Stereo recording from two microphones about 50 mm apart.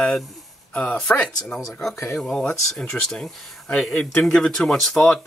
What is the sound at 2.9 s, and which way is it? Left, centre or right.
Speech, centre.